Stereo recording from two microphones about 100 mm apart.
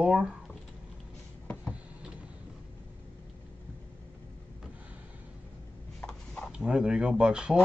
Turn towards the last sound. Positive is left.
turn(degrees=-5)  # may be behind; listen again after turning